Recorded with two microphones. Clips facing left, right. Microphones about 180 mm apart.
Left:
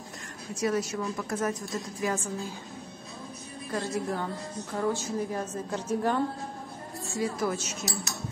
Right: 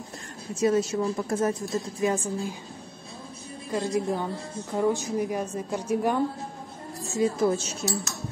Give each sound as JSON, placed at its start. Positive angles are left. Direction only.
{"t": 0.6, "sound": "a woman's voice", "side_deg": -25}
{"t": 3.7, "sound": "a woman's voice", "side_deg": -20}
{"t": 7.1, "sound": "a woman's voice", "side_deg": -25}